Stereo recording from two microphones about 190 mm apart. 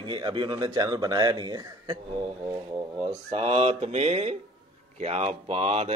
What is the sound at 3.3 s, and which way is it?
Speech, 30° right (ahead or behind).